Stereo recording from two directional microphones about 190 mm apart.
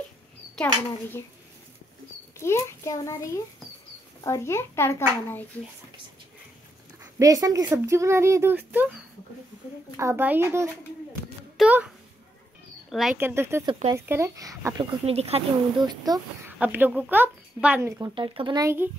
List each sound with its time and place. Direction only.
2.3 s a child's voice: 15° left (ahead or behind)
7.0 s speech: 15° right (ahead or behind)
9.9 s a child's voice: 15° right (ahead or behind)
12.9 s speech: 5° right (ahead or behind)
15.0 s speech: 30° right (ahead or behind)
16.4 s speech: 10° right (ahead or behind)
18.1 s speech: 25° right (ahead or behind)